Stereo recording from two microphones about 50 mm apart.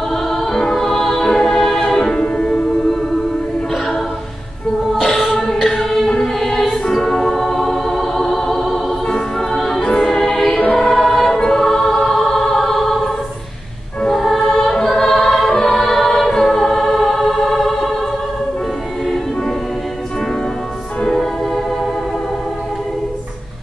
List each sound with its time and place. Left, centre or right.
0.1 s music: centre
4.9 s music: centre
5.4 s choir: centre
9.0 s music: centre
10.5 s choir: centre
11.3 s music: centre
14.0 s music: centre
21.0 s music: centre